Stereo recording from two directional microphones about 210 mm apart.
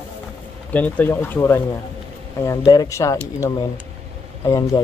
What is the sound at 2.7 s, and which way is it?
Speech, 15° left (ahead or behind).